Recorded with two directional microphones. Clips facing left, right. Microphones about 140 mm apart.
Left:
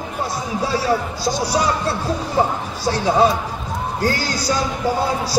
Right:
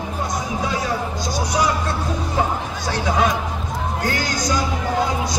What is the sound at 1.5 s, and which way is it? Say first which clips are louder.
Speech: left 1 dB; 35° left (ahead or behind).